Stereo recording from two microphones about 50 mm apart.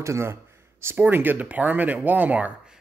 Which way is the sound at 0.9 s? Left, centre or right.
Right.